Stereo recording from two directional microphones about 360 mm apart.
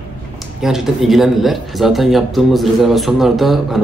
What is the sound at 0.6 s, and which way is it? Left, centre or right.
A man's voice, centre.